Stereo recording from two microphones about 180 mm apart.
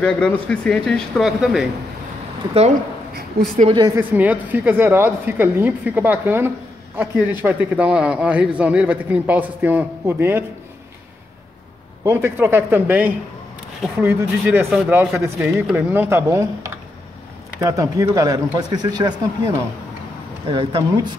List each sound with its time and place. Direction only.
0.0 s speech: 5° left (ahead or behind)
3.4 s a woman's voice: 60° right (ahead or behind)
3.7 s speech: 20° right (ahead or behind)
4.0 s a woman's voice: 10° right (ahead or behind)
12.0 s a woman's voice: 15° right (ahead or behind)
17.6 s speech: 20° right (ahead or behind)